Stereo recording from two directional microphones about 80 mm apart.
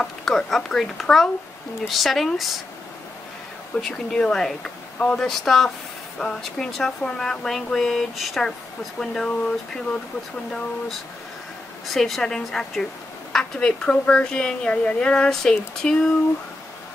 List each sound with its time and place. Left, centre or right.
0.0 s speech: centre
3.7 s a woman's voice: centre
5.2 s a woman's voice: centre
11.9 s a woman's voice: centre